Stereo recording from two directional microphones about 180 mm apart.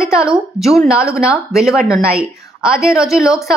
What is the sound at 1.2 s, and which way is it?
Speech, 5° right (ahead or behind).